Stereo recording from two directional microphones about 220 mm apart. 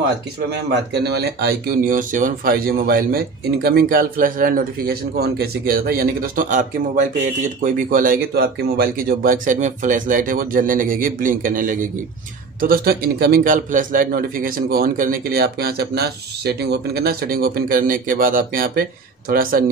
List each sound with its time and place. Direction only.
0.5 s a man's voice: 45° right (ahead or behind)